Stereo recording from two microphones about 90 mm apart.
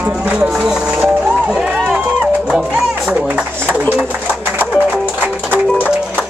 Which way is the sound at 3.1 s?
15° right (ahead or behind).